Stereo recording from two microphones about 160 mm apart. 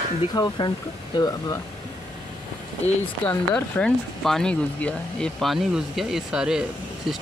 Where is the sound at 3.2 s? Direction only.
10° left (ahead or behind).